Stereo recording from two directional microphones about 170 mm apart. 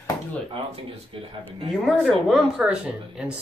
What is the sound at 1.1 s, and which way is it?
Speech, 30° right (ahead or behind).